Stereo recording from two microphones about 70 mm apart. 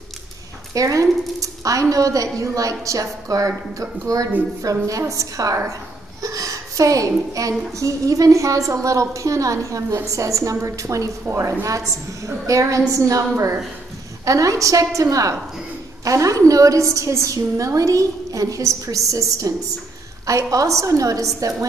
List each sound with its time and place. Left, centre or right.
0.7 s a woman's voice: right